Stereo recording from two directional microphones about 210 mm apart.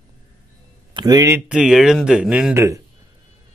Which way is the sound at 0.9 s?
20° right (ahead or behind).